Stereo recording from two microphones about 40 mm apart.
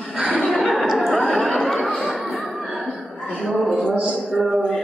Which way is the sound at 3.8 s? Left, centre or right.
Right.